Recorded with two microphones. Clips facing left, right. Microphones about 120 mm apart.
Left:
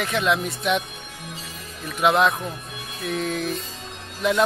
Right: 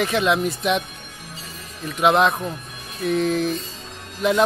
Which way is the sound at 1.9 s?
Centre (ahead or behind).